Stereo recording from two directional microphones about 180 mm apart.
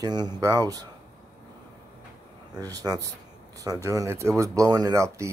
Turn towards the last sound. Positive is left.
turn(degrees=-15)  # may be behind; listen again after turning